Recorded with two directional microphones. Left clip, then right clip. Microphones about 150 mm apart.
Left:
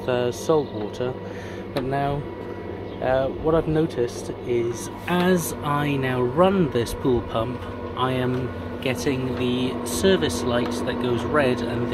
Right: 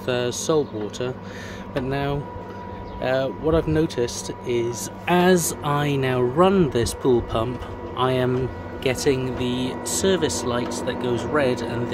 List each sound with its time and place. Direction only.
0.0 s speech: 30° right (ahead or behind)
5.0 s speech: 45° right (ahead or behind); by 11.8 s 15° right (ahead or behind)